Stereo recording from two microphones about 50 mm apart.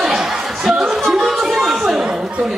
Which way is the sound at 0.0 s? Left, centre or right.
Centre.